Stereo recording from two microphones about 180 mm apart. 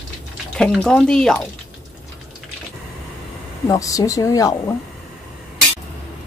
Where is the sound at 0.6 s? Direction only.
5° left (ahead or behind).